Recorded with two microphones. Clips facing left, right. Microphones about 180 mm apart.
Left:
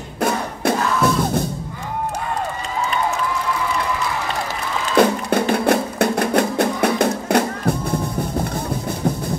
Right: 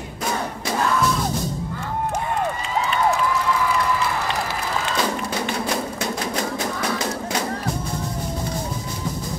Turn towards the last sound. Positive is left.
turn(degrees=60)  # may be behind; listen again after turning